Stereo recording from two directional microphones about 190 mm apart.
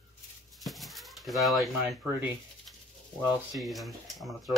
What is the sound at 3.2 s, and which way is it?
Speech, centre (ahead or behind).